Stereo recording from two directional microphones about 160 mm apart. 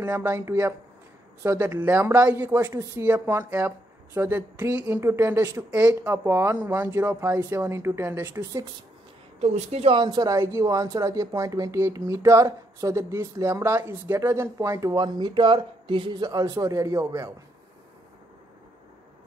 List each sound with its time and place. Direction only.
0.0 s speech: 15° right (ahead or behind)
9.4 s speech: 40° right (ahead or behind); by 17.3 s 20° right (ahead or behind)